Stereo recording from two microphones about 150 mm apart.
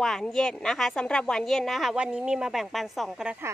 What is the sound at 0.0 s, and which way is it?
A woman's voice, centre (ahead or behind).